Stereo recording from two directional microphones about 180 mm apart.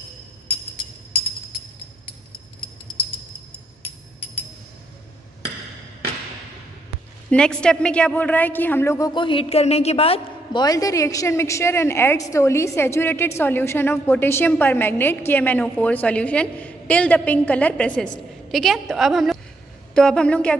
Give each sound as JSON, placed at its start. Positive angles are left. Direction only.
{"t": 7.2, "sound": "a woman's voice", "side_deg": 5}